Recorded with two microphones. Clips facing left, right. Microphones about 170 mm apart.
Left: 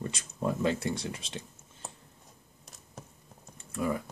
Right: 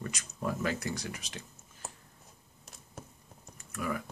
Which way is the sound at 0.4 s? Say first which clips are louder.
Left 4 dB; 25° left (ahead or behind).